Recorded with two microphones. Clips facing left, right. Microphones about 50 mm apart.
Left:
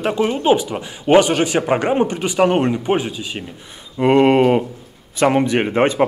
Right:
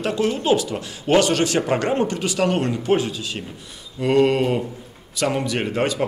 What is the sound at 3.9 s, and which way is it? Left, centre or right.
Speech, left.